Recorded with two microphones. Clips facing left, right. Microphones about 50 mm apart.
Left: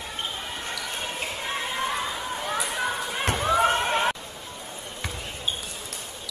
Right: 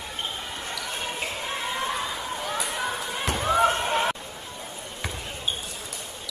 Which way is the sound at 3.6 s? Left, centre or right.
Left.